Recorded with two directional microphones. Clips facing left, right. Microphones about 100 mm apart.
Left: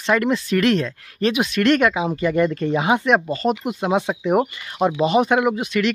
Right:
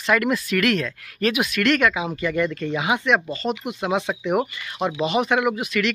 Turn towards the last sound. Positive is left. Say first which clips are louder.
# left 3 dB
turn(degrees=35)  # may be behind; listen again after turning